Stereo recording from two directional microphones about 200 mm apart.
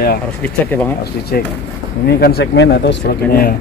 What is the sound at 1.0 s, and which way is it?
Speech, 55° left (ahead or behind).